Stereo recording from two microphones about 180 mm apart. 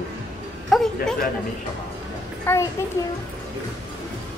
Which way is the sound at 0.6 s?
Centre (ahead or behind).